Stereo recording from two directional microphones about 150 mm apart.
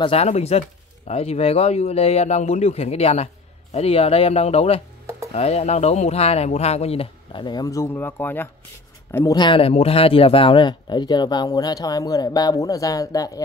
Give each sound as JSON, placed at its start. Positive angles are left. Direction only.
{"t": 0.0, "sound": "speech", "side_deg": 40}